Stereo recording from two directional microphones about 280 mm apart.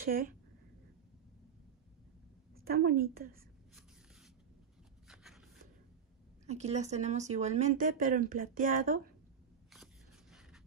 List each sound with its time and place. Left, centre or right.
0.0 s a woman's voice: right
2.6 s a woman's voice: right
5.0 s a sound: centre
6.4 s speech: right